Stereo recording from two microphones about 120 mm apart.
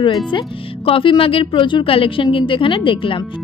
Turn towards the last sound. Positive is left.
turn(degrees=45)  # may be behind; listen again after turning